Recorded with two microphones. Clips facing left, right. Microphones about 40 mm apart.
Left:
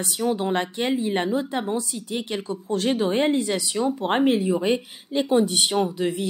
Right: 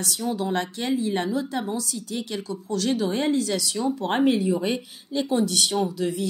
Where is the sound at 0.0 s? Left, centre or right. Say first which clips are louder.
Left 3 dB; left.